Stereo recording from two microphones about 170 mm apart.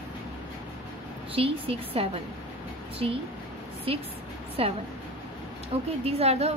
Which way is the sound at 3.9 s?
35° right (ahead or behind).